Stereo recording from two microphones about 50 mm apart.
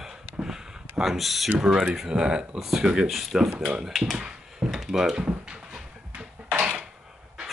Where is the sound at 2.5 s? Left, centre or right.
Centre.